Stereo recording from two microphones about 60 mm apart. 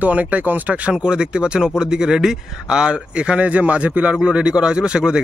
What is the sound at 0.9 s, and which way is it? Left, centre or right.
Speech, centre.